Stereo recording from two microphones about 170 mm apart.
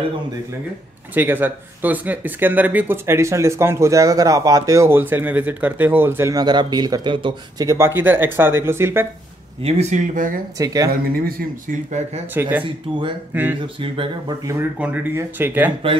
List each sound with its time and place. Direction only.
1.1 s speech: 10° right (ahead or behind)
9.6 s speech: 40° right (ahead or behind)
10.6 s speech: 20° right (ahead or behind)
10.9 s speech: 60° right (ahead or behind); by 12.2 s 45° right (ahead or behind)
12.4 s speech: 10° right (ahead or behind)
13.7 s speech: 30° right (ahead or behind)
14.4 s speech: 15° right (ahead or behind)